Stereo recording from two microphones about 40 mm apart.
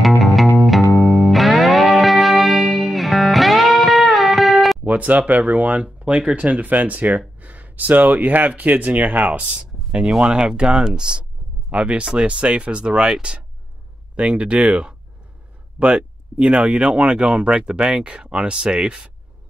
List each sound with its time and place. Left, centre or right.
0.0 s music: centre
4.8 s a sound: right
5.2 s speech: right
10.0 s speech: centre